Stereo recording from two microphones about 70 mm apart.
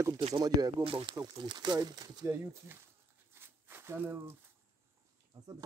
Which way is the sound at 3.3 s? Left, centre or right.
Right.